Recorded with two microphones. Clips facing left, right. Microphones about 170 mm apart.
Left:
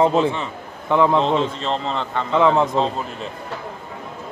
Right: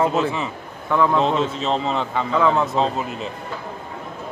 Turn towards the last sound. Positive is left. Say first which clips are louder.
# even
turn(degrees=-5)  # may be behind; listen again after turning